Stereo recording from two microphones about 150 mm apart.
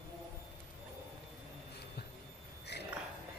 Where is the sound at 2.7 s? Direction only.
90° left.